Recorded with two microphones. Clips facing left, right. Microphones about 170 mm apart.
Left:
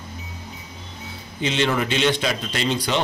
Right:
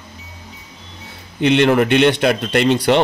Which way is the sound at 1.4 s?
60° right (ahead or behind).